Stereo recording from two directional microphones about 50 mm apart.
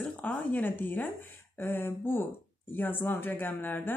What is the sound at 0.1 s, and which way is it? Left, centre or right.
Speech, left.